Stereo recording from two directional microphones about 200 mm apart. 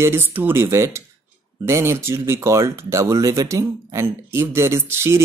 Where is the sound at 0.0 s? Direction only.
10° right (ahead or behind).